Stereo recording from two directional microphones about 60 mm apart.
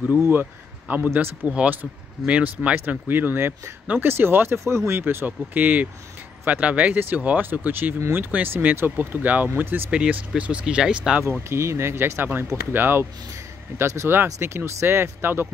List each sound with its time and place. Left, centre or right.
0.3 s speech: right
1.5 s speech: centre
2.9 s speech: right
4.6 s speech: right
5.0 s speech: right
9.8 s speech: centre
11.4 s speech: right
13.7 s speech: right
14.0 s speech: right